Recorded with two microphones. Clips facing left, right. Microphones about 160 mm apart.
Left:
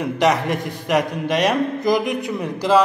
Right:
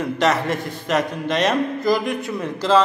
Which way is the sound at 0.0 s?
15° left (ahead or behind).